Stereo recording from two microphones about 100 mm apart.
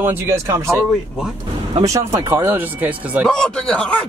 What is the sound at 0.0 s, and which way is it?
Speech, 25° right (ahead or behind).